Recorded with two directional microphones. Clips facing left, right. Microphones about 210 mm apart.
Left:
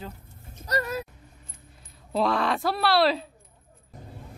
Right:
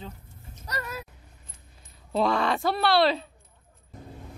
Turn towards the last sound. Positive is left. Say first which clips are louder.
# even
turn(degrees=0)  # may be behind; listen again after turning